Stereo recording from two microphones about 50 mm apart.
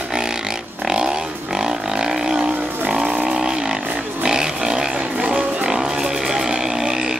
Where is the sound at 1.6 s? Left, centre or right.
Centre.